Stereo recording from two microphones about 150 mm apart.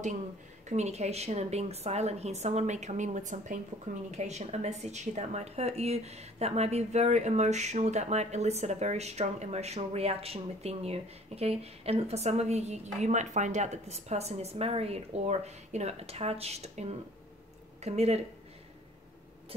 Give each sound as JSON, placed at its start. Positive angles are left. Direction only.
{"t": 0.7, "sound": "a woman's voice", "side_deg": -50}